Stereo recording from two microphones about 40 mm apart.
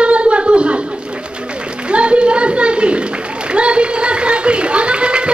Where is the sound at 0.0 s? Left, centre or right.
Right.